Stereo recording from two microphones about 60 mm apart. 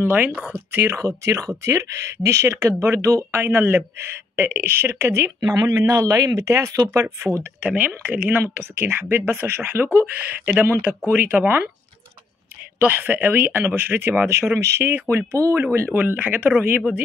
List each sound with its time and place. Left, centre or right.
0.0 s speech: right
1.0 s speech: right
4.9 s speech: right
5.4 s speech: right
7.6 s speech: right
9.8 s speech: right
12.7 s speech: right
15.6 s speech: right